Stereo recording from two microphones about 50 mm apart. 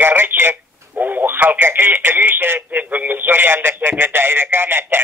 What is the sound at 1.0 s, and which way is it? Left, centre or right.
Speech, right.